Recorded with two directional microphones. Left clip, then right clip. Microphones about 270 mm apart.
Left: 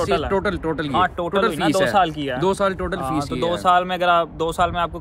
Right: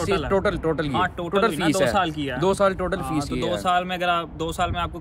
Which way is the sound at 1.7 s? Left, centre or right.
Centre.